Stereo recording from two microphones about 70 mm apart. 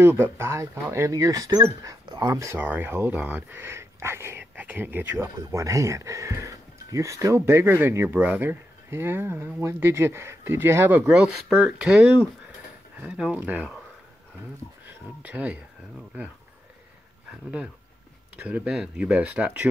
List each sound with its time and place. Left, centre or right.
0.0 s speech: right
2.5 s speech: right
5.5 s speech: right
11.1 s speech: centre
14.9 s speech: right
18.4 s speech: right